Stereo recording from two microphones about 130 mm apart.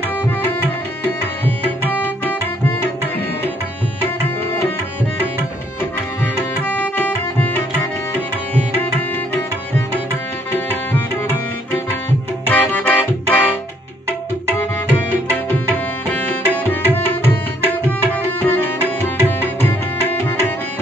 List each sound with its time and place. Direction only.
1.4 s tabla: 15° left (ahead or behind)
6.2 s tabla: 15° left (ahead or behind)
10.5 s music: 15° left (ahead or behind)
12.4 s music: 15° left (ahead or behind)
15.0 s tabla: 10° left (ahead or behind)
20.1 s tabla: 15° left (ahead or behind)